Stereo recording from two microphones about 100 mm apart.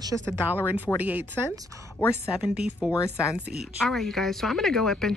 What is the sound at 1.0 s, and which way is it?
Speech, 15° right (ahead or behind).